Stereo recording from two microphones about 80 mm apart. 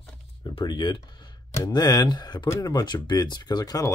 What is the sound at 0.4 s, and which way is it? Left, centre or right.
Speech, left.